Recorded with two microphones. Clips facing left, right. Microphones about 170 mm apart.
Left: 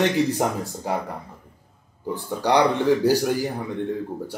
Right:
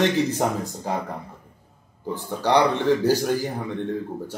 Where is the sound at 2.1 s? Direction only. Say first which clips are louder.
Even; 15° left (ahead or behind).